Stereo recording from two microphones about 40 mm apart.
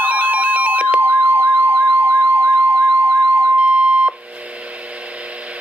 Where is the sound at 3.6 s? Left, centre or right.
Right.